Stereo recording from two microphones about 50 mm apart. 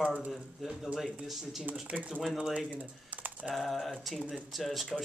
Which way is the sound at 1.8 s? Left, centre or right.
Right.